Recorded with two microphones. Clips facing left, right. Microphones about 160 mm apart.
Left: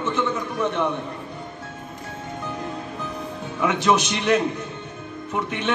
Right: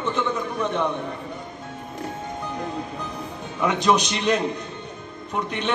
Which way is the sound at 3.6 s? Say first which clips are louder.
Even; 15° right (ahead or behind).